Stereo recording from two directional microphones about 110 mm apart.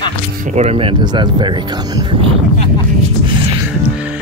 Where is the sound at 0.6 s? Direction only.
65° right (ahead or behind); by 1.5 s 45° right (ahead or behind).